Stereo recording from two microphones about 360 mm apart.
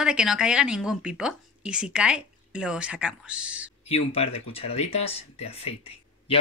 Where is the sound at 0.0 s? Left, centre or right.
Centre.